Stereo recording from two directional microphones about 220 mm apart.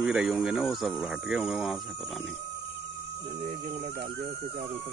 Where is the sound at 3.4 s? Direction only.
30° right (ahead or behind).